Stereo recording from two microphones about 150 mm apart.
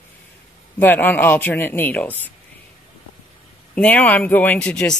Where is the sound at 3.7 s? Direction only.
10° left (ahead or behind).